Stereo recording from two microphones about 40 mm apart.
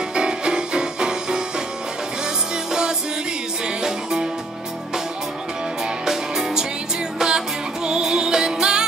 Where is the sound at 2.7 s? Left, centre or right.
Centre.